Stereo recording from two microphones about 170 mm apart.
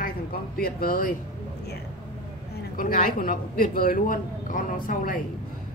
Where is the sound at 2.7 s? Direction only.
55° left (ahead or behind).